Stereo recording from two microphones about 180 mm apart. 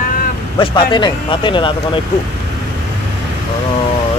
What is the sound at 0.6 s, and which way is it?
Speech, 25° left (ahead or behind).